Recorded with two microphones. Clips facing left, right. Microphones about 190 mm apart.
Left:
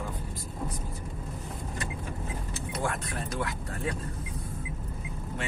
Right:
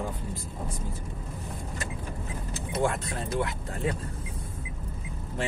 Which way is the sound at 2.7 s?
25° right (ahead or behind).